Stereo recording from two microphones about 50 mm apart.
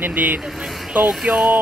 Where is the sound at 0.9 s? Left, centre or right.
Right.